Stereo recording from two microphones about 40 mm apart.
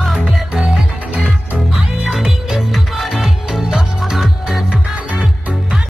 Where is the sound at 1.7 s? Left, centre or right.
Centre.